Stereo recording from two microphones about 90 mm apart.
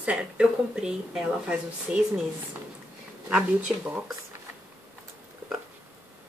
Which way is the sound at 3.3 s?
10° right (ahead or behind).